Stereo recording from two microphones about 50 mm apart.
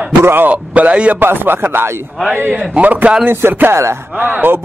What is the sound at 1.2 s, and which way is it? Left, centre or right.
Speech, right.